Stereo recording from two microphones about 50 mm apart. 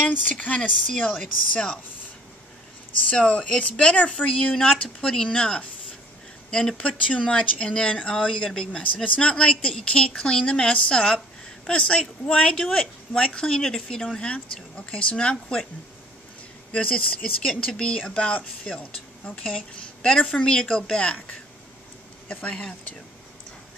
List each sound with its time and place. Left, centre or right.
0.1 s speech: left
3.2 s speech: left
4.5 s a woman's voice: centre
7.1 s speech: left
8.3 s speech: centre
8.7 s a woman's voice: centre
14.1 s speech: left
16.7 s speech: left
19.8 s a sound: centre
20.3 s a woman's voice: centre
22.3 s speech: left